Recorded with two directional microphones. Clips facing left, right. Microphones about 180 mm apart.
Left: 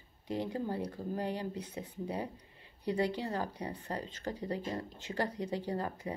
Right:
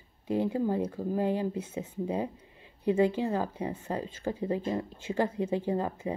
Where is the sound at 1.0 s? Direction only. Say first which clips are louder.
Right 6 dB; 45° right (ahead or behind).